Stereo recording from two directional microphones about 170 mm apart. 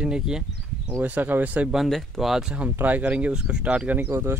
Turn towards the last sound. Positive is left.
turn(degrees=-15)  # may be behind; listen again after turning